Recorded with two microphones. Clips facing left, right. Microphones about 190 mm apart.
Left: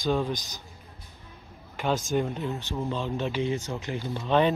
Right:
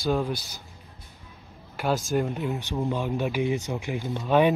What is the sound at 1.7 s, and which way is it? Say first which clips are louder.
Speech: right 1 dB; 5° right (ahead or behind).